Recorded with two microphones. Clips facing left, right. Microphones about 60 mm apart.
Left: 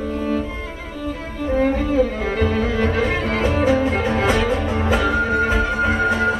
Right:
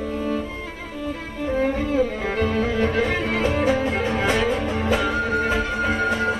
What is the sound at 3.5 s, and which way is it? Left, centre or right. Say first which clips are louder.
Music: left 4 dB; centre.